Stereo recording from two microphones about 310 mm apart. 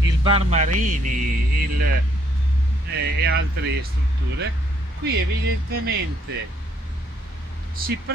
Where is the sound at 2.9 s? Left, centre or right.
Right.